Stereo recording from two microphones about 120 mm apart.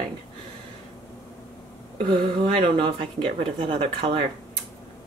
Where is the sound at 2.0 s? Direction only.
55° right (ahead or behind).